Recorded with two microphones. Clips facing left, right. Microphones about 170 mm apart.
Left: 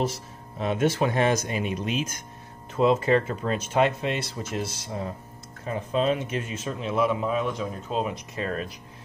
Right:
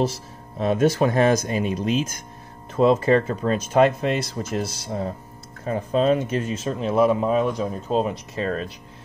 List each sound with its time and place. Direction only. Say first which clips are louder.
0.0 s speech: right 4 dB; 35° right (ahead or behind)